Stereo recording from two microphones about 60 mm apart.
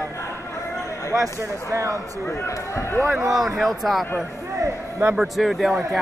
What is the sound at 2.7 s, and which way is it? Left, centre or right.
Speech, left.